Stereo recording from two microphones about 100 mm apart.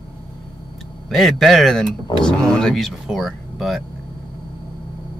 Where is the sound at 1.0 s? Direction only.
Centre (ahead or behind).